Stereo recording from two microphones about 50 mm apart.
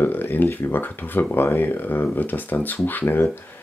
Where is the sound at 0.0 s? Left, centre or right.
Left.